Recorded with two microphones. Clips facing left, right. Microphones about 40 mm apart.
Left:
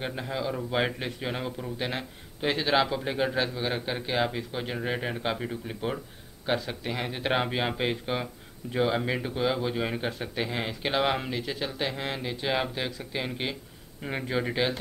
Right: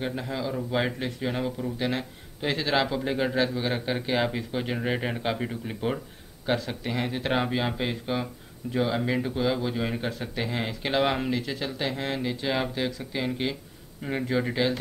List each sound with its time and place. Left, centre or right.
0.0 s speech: centre
6.4 s speech: centre
7.2 s speech: centre